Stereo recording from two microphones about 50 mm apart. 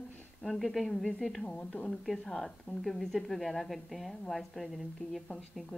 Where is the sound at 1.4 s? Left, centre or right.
Left.